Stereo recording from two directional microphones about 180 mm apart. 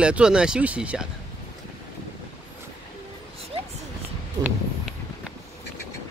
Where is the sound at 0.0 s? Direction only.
5° right (ahead or behind).